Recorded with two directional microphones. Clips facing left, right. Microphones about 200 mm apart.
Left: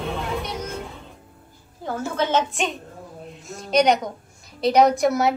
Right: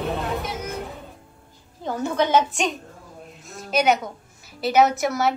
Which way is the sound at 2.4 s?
Centre (ahead or behind).